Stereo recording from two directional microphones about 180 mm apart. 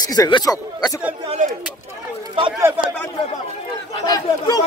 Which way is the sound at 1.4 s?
45° right (ahead or behind).